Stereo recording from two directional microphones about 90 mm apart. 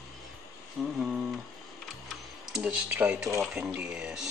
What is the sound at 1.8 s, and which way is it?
Music, centre (ahead or behind).